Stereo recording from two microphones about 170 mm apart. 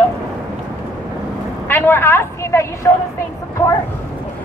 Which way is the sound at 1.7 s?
10° left (ahead or behind).